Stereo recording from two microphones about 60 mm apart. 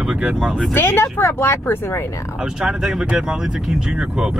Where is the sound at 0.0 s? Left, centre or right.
Centre.